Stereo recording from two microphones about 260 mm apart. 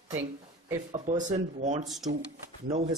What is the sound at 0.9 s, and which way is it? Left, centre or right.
Speech, right.